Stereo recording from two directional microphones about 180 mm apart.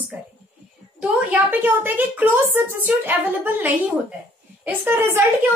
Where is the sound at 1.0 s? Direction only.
10° right (ahead or behind).